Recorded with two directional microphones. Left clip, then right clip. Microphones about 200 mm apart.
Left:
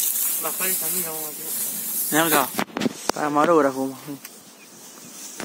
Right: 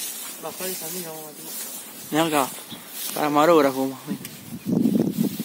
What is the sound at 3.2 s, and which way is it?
Speech, 15° right (ahead or behind).